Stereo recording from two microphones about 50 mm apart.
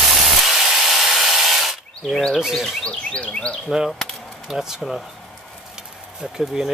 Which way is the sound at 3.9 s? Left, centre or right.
Centre.